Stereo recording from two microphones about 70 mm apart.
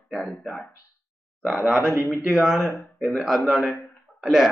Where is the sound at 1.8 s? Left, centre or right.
Left.